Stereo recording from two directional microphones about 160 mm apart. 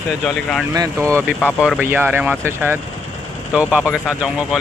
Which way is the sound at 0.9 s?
10° left (ahead or behind).